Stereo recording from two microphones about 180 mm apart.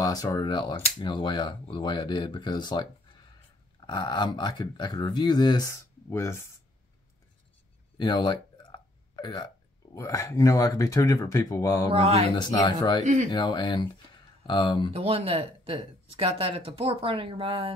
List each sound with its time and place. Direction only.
0.0 s speech: 20° left (ahead or behind)
8.0 s a sound: 25° left (ahead or behind)
9.9 s speech: 15° left (ahead or behind)
11.9 s speech: 35° right (ahead or behind)
12.3 s speech: 25° left (ahead or behind)
13.0 s speech: 40° right (ahead or behind)
13.3 s speech: 25° left (ahead or behind)
14.9 s speech: 35° right (ahead or behind)